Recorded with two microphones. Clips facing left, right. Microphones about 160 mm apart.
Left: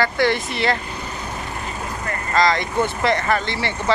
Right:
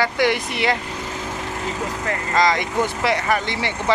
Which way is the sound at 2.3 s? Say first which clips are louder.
Left 1 dB; 15° right (ahead or behind).